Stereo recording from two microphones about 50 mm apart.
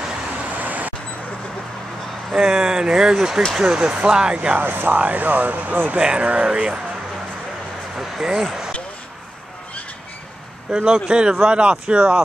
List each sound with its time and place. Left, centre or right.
0.5 s vehicle: right
2.6 s speech: centre
4.6 s speech: right
5.9 s speech: centre
8.0 s speech: centre
10.7 s speech: centre